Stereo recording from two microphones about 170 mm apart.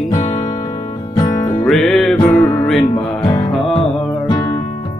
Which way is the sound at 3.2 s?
25° left (ahead or behind).